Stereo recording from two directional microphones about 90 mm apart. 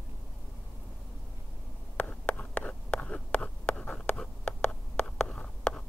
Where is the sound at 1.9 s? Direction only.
15° left (ahead or behind).